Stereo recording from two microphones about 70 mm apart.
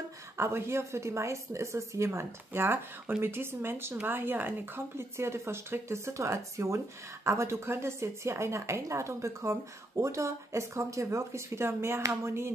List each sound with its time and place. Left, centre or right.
0.4 s a woman's voice: right